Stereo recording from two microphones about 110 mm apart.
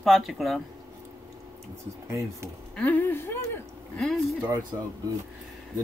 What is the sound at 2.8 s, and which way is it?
Speech, 15° left (ahead or behind).